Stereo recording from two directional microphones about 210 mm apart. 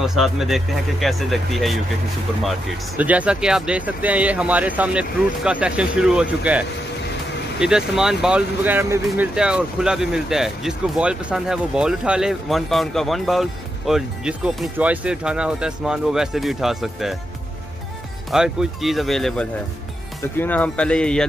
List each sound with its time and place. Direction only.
0.0 s speech: centre (ahead or behind)
3.0 s speech: 5° right (ahead or behind)
7.6 s speech: 5° right (ahead or behind)
18.3 s speech: centre (ahead or behind)